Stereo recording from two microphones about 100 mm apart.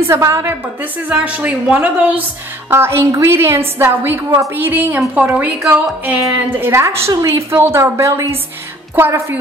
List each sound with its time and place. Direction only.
0.0 s a woman's voice: 25° right (ahead or behind)
1.0 s a woman's voice: 15° right (ahead or behind)
2.7 s a woman's voice: 25° right (ahead or behind)